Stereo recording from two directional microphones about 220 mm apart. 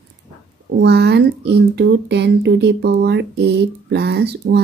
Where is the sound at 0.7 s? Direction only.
50° right (ahead or behind).